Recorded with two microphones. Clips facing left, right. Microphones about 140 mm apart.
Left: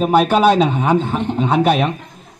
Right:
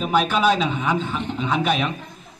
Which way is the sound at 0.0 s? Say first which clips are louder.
Left 7 dB; 50° left (ahead or behind).